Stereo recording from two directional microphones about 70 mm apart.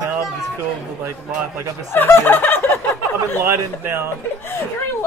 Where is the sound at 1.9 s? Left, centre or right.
Left.